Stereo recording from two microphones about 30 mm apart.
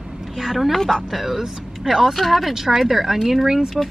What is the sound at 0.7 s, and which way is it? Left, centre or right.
Speech, centre.